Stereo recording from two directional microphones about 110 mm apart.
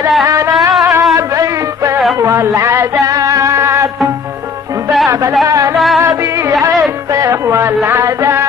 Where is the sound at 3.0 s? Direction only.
30° right (ahead or behind).